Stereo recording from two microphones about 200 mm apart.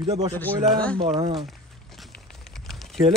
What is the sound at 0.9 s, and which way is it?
Speech, 25° right (ahead or behind).